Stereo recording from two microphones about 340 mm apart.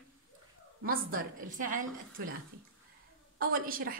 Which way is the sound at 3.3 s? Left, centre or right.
Right.